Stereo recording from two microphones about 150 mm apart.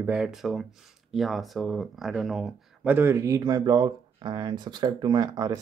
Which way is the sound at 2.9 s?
15° right (ahead or behind).